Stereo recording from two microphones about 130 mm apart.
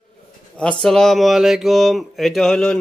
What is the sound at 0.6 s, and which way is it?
Speech, 5° left (ahead or behind).